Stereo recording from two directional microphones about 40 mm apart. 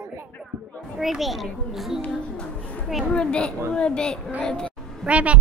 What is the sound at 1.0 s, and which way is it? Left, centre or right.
A child's voice, centre.